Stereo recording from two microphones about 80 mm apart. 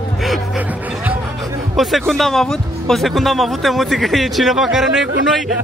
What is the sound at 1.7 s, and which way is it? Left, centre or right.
Speech, centre.